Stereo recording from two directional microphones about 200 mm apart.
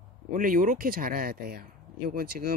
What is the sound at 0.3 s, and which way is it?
Speech, 45° right (ahead or behind).